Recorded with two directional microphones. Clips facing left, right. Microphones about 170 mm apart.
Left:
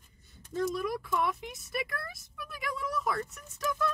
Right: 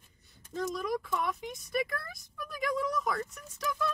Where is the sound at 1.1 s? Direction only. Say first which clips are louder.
Left 2 dB; 5° left (ahead or behind).